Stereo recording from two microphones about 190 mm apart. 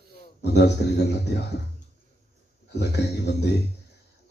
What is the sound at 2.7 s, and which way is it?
Speech, 65° left (ahead or behind).